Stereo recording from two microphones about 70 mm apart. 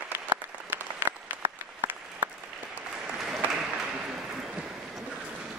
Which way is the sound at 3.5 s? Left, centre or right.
Centre.